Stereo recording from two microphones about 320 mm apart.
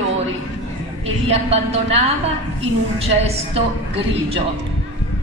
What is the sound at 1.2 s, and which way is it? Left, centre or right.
Speech, centre.